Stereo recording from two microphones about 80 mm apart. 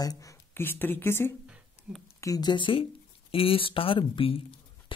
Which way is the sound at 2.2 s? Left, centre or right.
Left.